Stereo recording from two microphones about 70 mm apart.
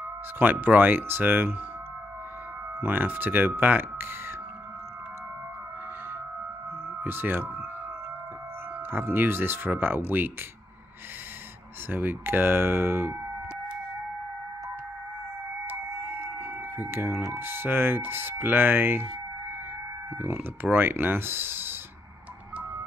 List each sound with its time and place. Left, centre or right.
0.4 s speech: right
2.8 s speech: right
7.0 s speech: right
8.9 s speech: right
11.9 s speech: right
15.8 s chicken: right
16.1 s speech: right
20.2 s speech: right